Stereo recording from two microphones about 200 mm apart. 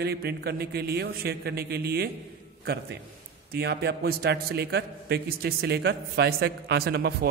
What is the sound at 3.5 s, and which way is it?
A man's voice, 55° right (ahead or behind).